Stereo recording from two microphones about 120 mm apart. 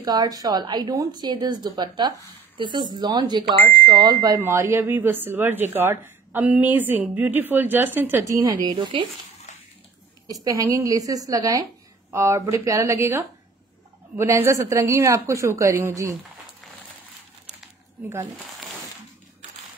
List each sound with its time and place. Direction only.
0.0 s a woman's voice: 35° right (ahead or behind)
4.4 s speech: 20° right (ahead or behind); by 9.0 s 40° right (ahead or behind)
10.2 s speech: 30° right (ahead or behind)